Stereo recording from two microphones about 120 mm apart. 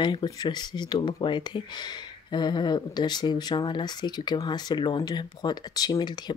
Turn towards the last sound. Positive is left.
turn(degrees=35)  # may be behind; listen again after turning